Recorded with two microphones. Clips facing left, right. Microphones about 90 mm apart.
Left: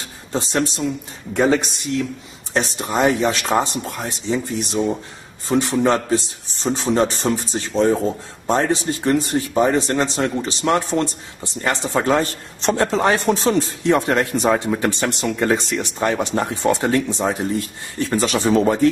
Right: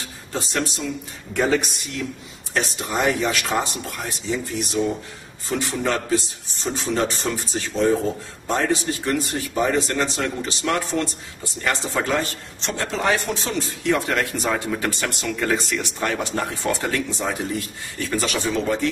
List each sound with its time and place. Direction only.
0.3 s a man's voice: 30° left (ahead or behind)